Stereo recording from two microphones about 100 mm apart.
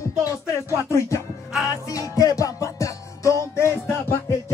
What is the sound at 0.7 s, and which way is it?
Music, 30° left (ahead or behind).